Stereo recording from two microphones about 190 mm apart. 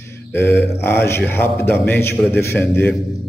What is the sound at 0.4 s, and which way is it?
Mantra, 65° left (ahead or behind).